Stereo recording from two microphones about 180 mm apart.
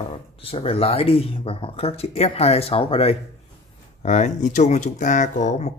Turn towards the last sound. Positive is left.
turn(degrees=40)  # may be behind; listen again after turning